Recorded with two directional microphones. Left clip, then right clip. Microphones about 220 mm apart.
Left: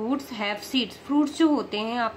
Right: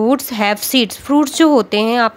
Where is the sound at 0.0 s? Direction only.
50° right (ahead or behind).